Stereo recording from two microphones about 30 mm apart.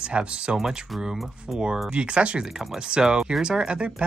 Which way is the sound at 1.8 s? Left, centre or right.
Right.